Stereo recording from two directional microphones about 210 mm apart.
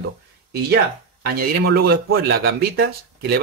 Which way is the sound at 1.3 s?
45° right (ahead or behind).